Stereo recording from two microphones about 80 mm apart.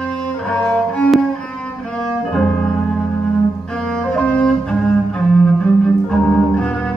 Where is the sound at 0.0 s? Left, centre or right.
Centre.